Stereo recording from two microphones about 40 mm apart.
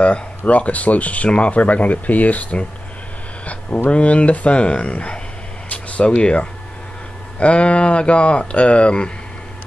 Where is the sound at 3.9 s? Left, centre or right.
Left.